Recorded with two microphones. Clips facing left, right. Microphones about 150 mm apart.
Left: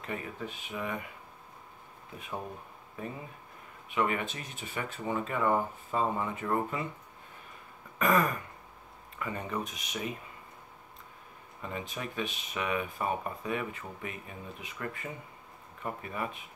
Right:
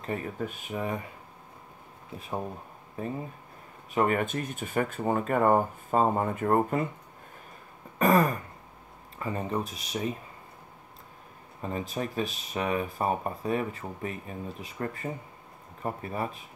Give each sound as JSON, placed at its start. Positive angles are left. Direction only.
{"t": 0.0, "sound": "speech", "side_deg": -40}
{"t": 2.1, "sound": "speech", "side_deg": -35}
{"t": 8.0, "sound": "speech", "side_deg": -35}
{"t": 11.6, "sound": "speech", "side_deg": -35}